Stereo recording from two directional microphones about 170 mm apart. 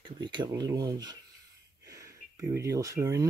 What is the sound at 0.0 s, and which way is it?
Speech, 25° right (ahead or behind).